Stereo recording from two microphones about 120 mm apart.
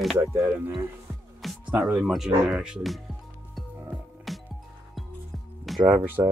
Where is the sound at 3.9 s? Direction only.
Centre (ahead or behind).